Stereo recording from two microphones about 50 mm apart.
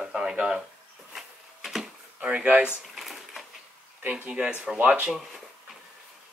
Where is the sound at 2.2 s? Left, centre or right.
Right.